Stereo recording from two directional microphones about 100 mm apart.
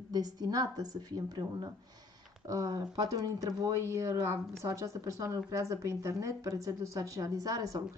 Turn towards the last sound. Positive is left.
turn(degrees=-35)  # may be behind; listen again after turning